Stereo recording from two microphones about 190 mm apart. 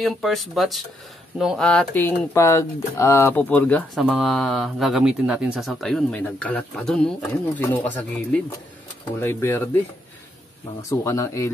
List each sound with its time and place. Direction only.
0.0 s speech: centre (ahead or behind)
10.8 s speech: 15° left (ahead or behind)